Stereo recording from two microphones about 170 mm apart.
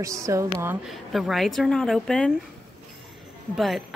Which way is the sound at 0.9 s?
Centre (ahead or behind).